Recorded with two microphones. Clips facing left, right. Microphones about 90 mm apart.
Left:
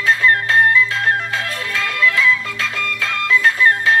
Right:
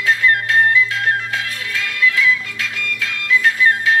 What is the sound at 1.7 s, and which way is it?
Music, 90° left.